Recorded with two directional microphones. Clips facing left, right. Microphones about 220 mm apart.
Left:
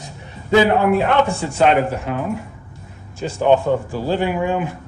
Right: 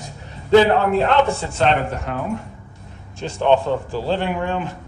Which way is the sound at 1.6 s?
10° left (ahead or behind).